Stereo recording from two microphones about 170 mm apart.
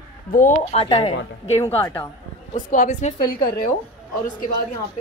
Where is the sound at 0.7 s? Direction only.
30° left (ahead or behind).